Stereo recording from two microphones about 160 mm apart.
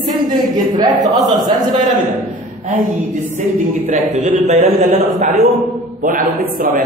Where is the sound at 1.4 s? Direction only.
25° right (ahead or behind).